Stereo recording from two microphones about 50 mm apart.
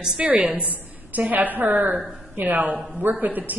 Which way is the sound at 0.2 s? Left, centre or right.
Right.